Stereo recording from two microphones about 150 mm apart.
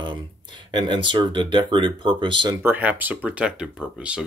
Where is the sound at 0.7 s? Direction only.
30° right (ahead or behind).